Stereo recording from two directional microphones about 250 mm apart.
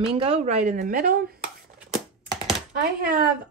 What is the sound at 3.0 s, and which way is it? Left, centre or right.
Speech, right.